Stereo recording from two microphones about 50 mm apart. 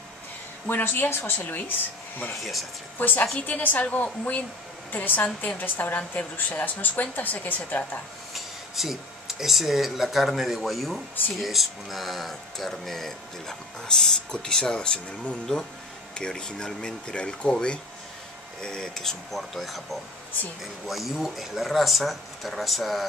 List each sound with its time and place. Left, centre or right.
0.7 s a woman's voice: left
3.0 s speech: left
8.4 s speech: centre